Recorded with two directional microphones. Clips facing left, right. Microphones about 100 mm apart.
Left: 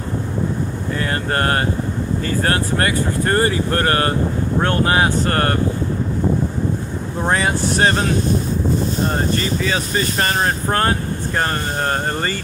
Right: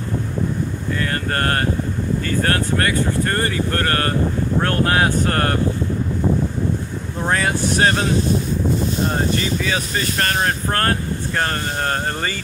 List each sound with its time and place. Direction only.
1.0 s speech: 20° left (ahead or behind)
4.6 s speech: 10° left (ahead or behind)
7.2 s speech: 5° left (ahead or behind)
9.6 s speech: centre (ahead or behind)